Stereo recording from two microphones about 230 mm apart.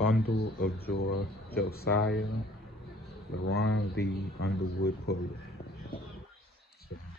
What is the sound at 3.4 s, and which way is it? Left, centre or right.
Speech, left.